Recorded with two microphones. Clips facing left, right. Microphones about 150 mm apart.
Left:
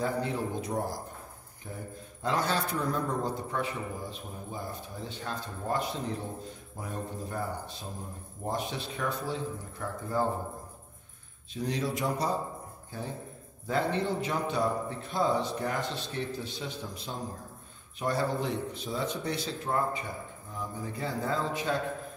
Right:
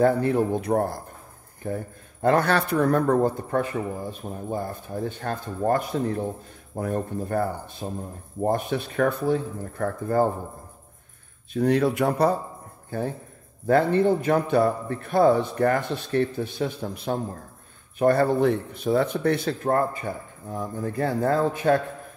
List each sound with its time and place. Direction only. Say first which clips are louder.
0.0 s a man's voice: right 11 dB; 60° right (ahead or behind)
11.5 s a man's voice: right 11 dB; 60° right (ahead or behind)
13.7 s a man's voice: right 10 dB; 55° right (ahead or behind)